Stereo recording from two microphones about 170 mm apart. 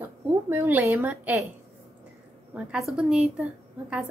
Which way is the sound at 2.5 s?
5° right (ahead or behind).